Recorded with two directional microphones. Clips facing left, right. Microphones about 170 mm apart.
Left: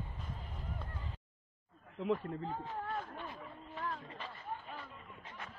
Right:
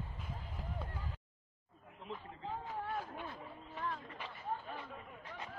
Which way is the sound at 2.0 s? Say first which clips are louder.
Left 13 dB; 90° left.